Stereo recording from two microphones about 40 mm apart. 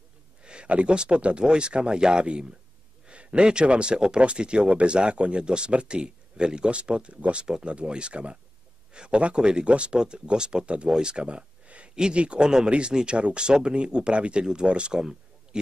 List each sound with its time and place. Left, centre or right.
0.4 s speech: right
11.9 s speech: centre